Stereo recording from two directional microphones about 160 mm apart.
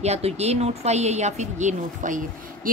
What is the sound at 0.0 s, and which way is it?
A woman's voice, 40° right (ahead or behind).